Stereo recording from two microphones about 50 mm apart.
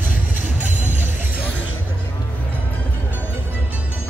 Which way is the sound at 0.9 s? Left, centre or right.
Right.